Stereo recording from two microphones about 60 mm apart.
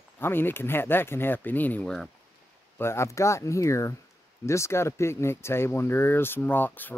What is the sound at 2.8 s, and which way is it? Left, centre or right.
Speech, left.